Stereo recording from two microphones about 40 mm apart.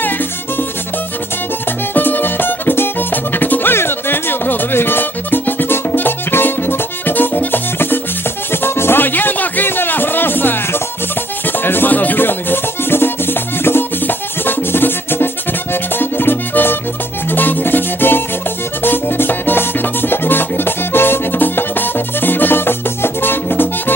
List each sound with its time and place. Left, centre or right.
2.0 s music: left
3.1 s music: left
3.7 s music: left
8.5 s music: left
9.0 s music: left
11.9 s music: left